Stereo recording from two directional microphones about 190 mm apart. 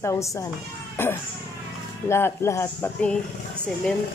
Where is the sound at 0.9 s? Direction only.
10° left (ahead or behind).